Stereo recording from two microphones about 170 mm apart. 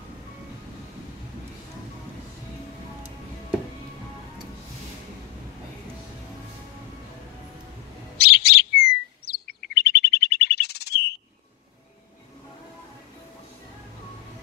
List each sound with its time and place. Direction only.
8.2 s bird: 70° left (ahead or behind)